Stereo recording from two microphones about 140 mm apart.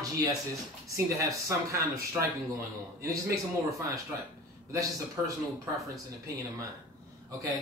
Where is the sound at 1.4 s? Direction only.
20° right (ahead or behind).